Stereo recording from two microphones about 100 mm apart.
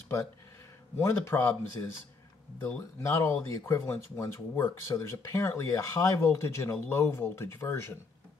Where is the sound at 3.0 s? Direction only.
30° left (ahead or behind).